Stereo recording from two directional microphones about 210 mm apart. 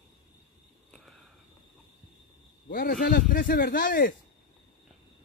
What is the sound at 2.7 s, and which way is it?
A man's voice, 45° left (ahead or behind).